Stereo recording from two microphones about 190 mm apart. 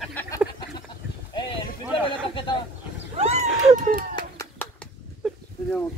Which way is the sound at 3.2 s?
35° right (ahead or behind).